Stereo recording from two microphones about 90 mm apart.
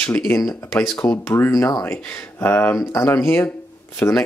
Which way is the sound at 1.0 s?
25° left (ahead or behind).